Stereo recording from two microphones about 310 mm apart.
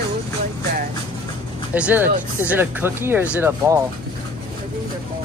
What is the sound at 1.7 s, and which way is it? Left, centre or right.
Speech, centre.